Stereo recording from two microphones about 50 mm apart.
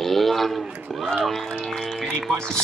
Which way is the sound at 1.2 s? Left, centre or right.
Centre.